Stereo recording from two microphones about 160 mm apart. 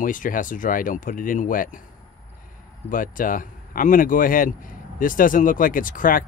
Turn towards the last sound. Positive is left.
turn(degrees=60)  # may be behind; listen again after turning